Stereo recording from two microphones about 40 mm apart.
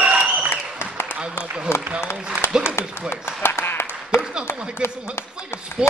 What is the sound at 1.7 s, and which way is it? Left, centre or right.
Speech, left.